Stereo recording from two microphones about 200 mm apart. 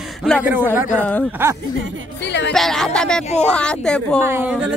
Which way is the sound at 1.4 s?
10° right (ahead or behind).